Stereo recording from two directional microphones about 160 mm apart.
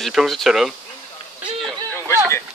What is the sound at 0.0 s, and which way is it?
Speech, centre (ahead or behind).